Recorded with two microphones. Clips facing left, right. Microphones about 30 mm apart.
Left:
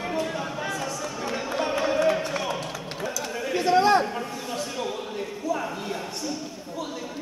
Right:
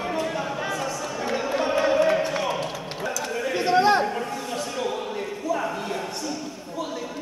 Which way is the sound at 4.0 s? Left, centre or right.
Centre.